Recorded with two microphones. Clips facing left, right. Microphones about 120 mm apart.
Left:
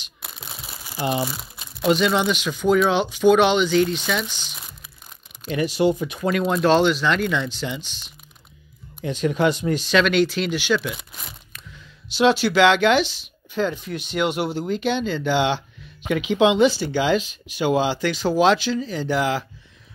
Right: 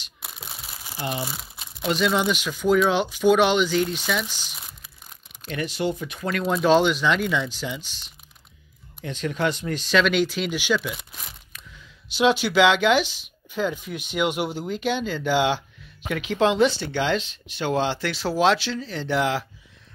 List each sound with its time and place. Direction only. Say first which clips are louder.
0.2 s a sound: left 1 dB; 5° right (ahead or behind)
2.0 s speech: left 2 dB; centre (ahead or behind)
5.4 s speech: left 6 dB; 15° left (ahead or behind)
6.6 s speech: even; 10° right (ahead or behind)
9.0 s speech: left 5 dB; 15° left (ahead or behind)
9.8 s speech: left 1 dB; centre (ahead or behind)
12.2 s speech: left 2 dB; 10° right (ahead or behind)